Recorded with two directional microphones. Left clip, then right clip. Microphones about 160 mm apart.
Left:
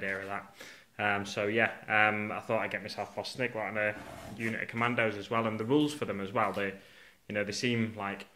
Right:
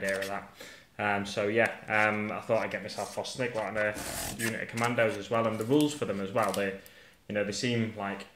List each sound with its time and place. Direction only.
0.0 s speech: 20° left (ahead or behind)